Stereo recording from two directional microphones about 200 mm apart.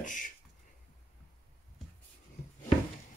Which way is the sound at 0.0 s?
40° left (ahead or behind).